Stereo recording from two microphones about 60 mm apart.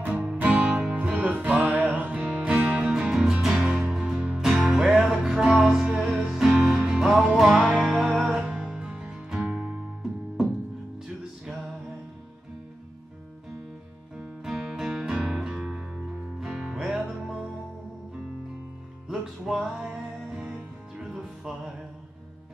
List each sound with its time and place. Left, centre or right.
0.0 s music: right
3.3 s music: centre
11.4 s music: centre
14.1 s music: centre
19.0 s music: centre